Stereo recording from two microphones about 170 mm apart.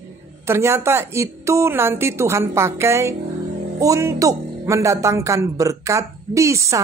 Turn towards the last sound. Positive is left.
turn(degrees=-20)  # may be behind; listen again after turning